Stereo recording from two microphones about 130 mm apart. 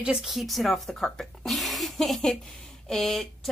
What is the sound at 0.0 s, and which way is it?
Speech, 5° right (ahead or behind).